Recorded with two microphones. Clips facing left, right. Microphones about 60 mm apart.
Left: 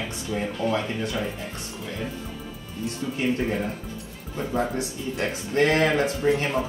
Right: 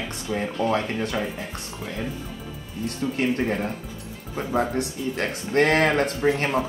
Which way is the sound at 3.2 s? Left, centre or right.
Right.